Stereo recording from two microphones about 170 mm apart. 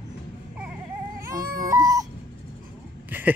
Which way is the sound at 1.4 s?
60° right (ahead or behind).